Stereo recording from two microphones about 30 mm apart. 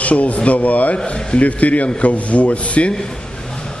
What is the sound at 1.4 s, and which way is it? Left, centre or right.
Speech, left.